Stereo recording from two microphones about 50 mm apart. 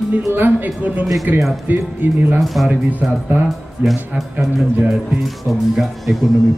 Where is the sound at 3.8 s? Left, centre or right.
Right.